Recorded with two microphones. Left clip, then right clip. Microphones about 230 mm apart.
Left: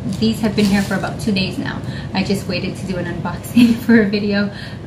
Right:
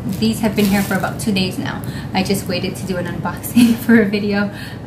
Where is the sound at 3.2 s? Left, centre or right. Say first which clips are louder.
Even; centre.